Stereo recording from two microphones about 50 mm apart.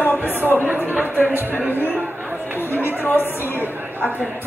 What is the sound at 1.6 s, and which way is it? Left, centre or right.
Speech, right.